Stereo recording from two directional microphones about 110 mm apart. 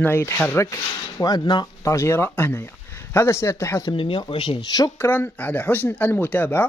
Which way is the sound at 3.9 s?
55° left (ahead or behind).